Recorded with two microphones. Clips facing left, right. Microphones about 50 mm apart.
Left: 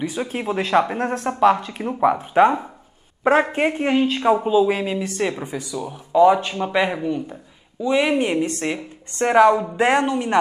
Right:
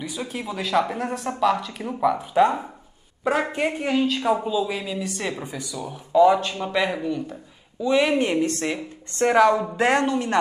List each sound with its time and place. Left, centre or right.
0.0 s a woman's voice: left
3.5 s a woman's voice: left
4.9 s speech: left